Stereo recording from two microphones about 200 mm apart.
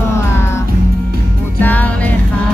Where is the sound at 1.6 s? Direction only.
10° left (ahead or behind).